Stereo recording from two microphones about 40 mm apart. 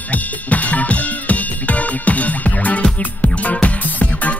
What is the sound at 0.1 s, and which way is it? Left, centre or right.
Drum kit, left.